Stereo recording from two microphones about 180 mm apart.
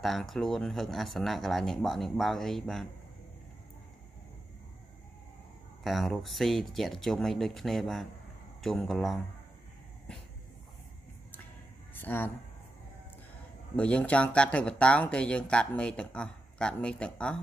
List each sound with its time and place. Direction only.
0.0 s speech: centre (ahead or behind)
5.9 s speech: centre (ahead or behind)
11.9 s a sound: 10° left (ahead or behind)
13.7 s speech: 5° left (ahead or behind)